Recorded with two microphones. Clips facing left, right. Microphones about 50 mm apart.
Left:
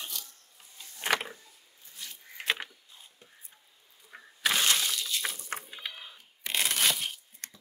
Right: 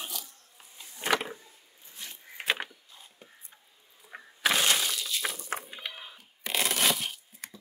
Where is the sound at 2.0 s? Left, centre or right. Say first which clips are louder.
Right 1 dB; right.